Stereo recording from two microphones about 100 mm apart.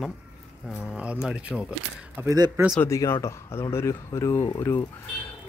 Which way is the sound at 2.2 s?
20° right (ahead or behind).